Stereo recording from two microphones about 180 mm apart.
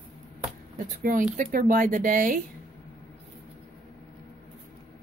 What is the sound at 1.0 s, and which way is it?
Speech, 45° right (ahead or behind).